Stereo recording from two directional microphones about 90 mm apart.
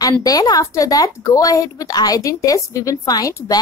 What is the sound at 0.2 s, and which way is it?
Speech, 40° left (ahead or behind).